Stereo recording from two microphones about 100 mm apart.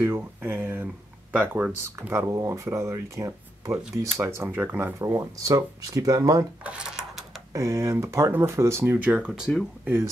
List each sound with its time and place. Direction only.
0.0 s a sound: 20° right (ahead or behind)
1.3 s speech: 15° right (ahead or behind)
2.0 s speech: 30° right (ahead or behind)
6.6 s coin: 10° right (ahead or behind)
7.5 s speech: 30° right (ahead or behind); by 9.3 s 10° right (ahead or behind)
9.3 s speech: centre (ahead or behind)